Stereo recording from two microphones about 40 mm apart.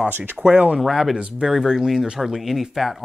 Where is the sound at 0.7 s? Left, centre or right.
Centre.